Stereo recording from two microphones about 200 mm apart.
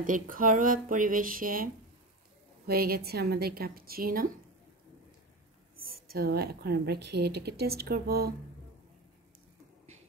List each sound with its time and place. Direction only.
0.0 s a woman's voice: 40° right (ahead or behind)
5.9 s a woman's voice: 50° right (ahead or behind)